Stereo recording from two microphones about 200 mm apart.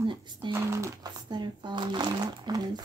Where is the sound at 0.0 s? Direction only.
25° right (ahead or behind).